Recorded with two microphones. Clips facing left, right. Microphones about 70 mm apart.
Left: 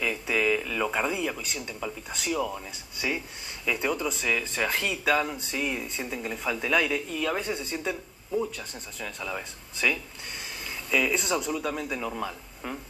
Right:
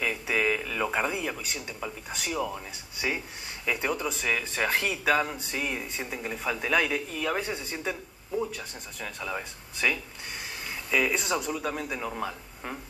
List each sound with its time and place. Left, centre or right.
0.0 s speech: centre
3.6 s speech: centre
6.2 s speech: centre
6.6 s speech: centre
7.5 s speech: right